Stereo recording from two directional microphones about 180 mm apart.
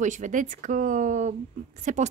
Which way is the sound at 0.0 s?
45° right (ahead or behind).